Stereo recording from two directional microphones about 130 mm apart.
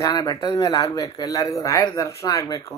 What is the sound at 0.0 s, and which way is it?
Speech, 30° left (ahead or behind).